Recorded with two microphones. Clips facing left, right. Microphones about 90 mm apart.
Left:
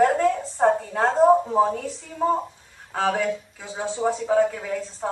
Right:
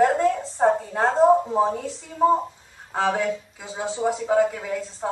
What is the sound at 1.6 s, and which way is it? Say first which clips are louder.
A woman's voice: left 1 dB; 15° right (ahead or behind).